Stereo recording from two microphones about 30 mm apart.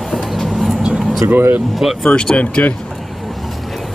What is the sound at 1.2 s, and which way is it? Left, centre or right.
Speech, right.